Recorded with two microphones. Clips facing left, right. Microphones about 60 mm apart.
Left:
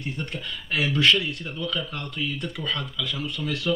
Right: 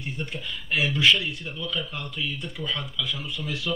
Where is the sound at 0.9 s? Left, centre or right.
Left.